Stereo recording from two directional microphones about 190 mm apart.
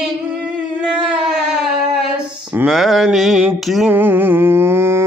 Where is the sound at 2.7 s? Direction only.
Centre (ahead or behind).